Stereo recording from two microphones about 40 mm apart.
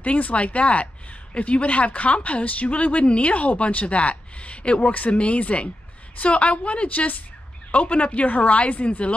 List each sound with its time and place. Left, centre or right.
0.0 s speech: left